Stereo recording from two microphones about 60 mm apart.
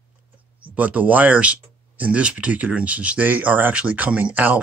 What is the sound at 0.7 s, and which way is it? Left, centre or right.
Speech, right.